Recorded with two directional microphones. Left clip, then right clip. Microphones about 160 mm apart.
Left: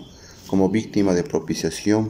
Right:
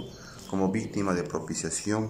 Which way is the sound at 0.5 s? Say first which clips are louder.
Left 9 dB; 40° left (ahead or behind).